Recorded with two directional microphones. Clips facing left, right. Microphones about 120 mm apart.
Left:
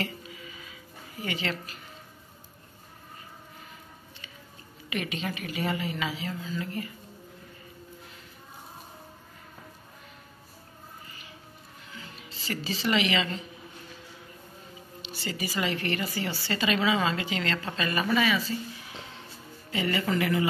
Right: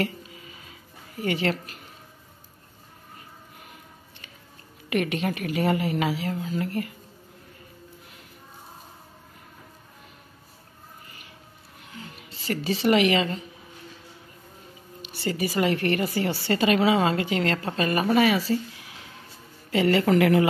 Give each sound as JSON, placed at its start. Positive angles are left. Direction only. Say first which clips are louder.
{"t": 0.0, "sound": "a sound", "louder": "right 6 dB", "side_deg": -45}
{"t": 1.2, "sound": "a woman's voice", "louder": "right 7 dB", "side_deg": -50}
{"t": 4.8, "sound": "a woman's voice", "louder": "right 7 dB", "side_deg": -55}
{"t": 12.2, "sound": "speech", "louder": "right 5 dB", "side_deg": -55}
{"t": 15.0, "sound": "a woman's voice", "louder": "right 7 dB", "side_deg": -55}
{"t": 19.7, "sound": "speech", "louder": "right 8 dB", "side_deg": -65}